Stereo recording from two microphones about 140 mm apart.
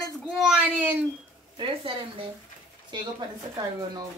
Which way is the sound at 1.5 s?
35° right (ahead or behind).